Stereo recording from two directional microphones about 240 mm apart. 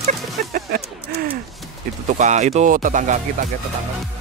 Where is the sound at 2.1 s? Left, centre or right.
Right.